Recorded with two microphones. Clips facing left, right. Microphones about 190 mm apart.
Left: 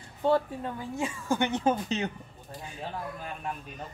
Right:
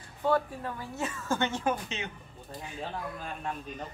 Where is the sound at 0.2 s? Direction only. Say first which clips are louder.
Left 2 dB; 25° left (ahead or behind).